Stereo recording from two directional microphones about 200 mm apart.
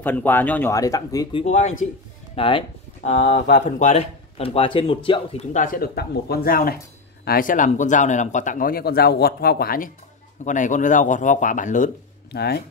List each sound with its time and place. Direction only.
0.0 s speech: 10° left (ahead or behind)
1.4 s speech: 35° left (ahead or behind)
5.5 s speech: 40° left (ahead or behind)
12.3 s speech: 55° left (ahead or behind)